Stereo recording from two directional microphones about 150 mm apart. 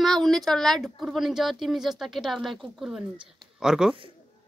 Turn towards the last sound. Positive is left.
turn(degrees=-5)  # may be behind; listen again after turning